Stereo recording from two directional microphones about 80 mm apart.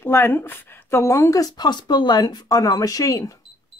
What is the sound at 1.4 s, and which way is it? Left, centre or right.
Speech, left.